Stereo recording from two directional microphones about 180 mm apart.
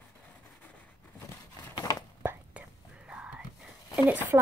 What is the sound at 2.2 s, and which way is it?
Whispering, 10° right (ahead or behind).